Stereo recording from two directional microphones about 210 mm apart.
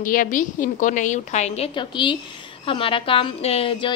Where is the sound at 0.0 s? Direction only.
40° left (ahead or behind).